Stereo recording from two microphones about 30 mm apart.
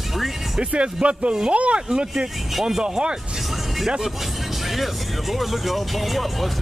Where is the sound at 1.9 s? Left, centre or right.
Right.